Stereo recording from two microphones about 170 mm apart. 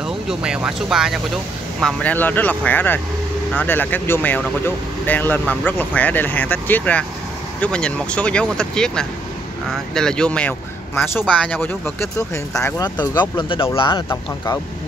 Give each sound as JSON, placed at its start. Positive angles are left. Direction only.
{"t": 0.3, "sound": "speech", "side_deg": -5}